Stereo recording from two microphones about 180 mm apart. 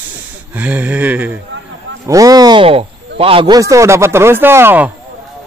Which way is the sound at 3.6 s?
15° right (ahead or behind).